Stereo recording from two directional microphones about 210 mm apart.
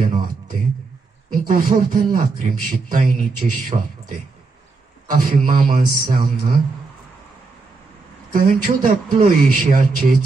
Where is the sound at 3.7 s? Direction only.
30° right (ahead or behind).